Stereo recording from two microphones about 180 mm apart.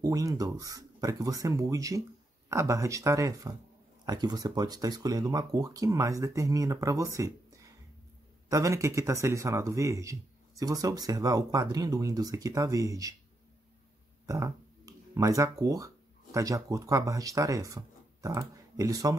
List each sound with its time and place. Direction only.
0.0 s speech: 20° right (ahead or behind)
14.2 s speech: 20° right (ahead or behind)